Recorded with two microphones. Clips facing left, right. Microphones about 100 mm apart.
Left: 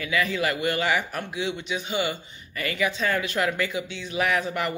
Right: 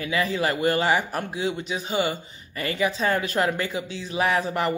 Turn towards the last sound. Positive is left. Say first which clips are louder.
# right 2 dB
turn(degrees=-35)  # may be behind; listen again after turning